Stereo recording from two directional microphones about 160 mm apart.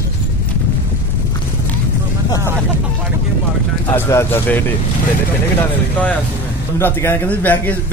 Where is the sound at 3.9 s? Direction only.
15° left (ahead or behind).